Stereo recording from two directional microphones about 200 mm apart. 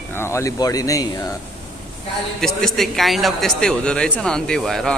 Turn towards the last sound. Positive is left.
turn(degrees=0)  # may be behind; listen again after turning